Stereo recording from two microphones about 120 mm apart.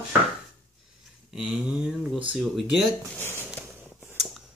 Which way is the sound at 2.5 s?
Centre (ahead or behind).